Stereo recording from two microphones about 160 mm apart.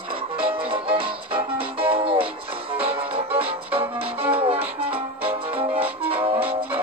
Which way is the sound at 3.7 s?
35° right (ahead or behind).